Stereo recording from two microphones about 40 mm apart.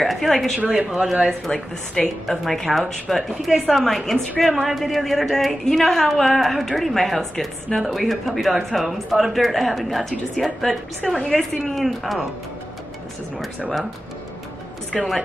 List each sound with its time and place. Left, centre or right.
0.0 s a woman's voice: centre
0.7 s speech: centre
1.5 s a woman's voice: left
2.2 s a woman's voice: centre
14.9 s a woman's voice: centre